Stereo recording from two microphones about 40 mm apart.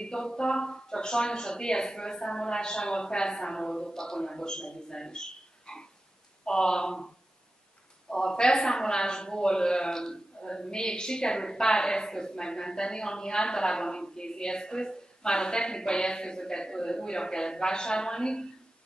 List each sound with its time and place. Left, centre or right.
0.0 s a man's voice: centre
8.1 s a man's voice: centre